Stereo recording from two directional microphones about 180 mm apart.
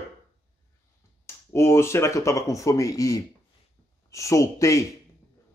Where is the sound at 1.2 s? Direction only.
15° left (ahead or behind).